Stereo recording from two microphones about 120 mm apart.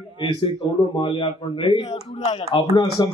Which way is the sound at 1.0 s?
45° left (ahead or behind).